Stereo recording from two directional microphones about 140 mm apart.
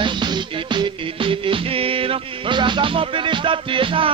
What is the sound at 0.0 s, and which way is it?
Music, 35° right (ahead or behind).